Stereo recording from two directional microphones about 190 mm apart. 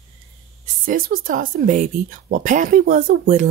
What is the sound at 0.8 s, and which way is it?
Speech, 45° right (ahead or behind).